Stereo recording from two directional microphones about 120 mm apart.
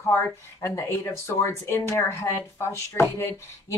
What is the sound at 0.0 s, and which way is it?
Speech, 20° left (ahead or behind).